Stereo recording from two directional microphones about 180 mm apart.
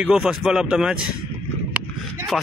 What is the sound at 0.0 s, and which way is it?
A man's voice, 5° right (ahead or behind).